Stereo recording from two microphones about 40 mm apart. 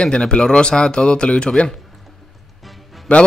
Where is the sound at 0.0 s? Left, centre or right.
Left.